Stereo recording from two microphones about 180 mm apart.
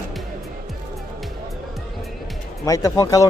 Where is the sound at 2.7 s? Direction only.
20° left (ahead or behind).